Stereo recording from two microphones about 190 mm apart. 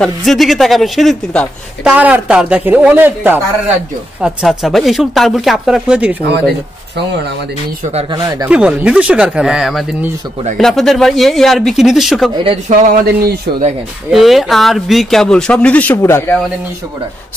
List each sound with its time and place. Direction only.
0.0 s speech: centre (ahead or behind)
1.9 s speech: 10° right (ahead or behind)
8.1 s speech: 20° right (ahead or behind)
8.5 s speech: 5° right (ahead or behind)
12.4 s speech: 30° right (ahead or behind)
12.8 s speech: 50° right (ahead or behind)
14.1 s speech: centre (ahead or behind)